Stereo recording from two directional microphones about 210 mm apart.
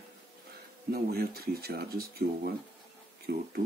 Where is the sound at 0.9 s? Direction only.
45° right (ahead or behind).